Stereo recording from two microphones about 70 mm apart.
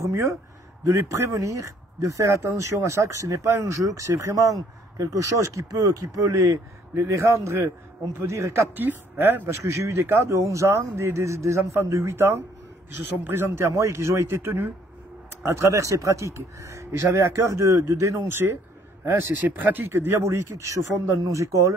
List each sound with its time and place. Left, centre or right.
0.0 s a sound: right
0.8 s speech: right
8.7 s a man's voice: right
13.7 s a man's voice: right